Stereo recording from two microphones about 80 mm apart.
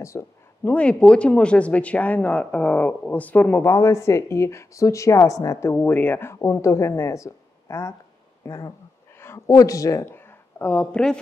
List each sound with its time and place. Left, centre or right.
0.0 s speech: left
0.7 s speech: centre
3.6 s speech: left
5.7 s speech: left
9.2 s a sound: left
9.6 s speech: left
10.1 s speech: left